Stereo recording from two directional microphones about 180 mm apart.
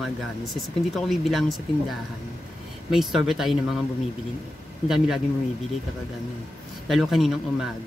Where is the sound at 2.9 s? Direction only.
Centre (ahead or behind).